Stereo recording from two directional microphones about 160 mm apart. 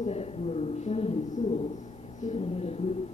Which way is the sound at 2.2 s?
40° left (ahead or behind).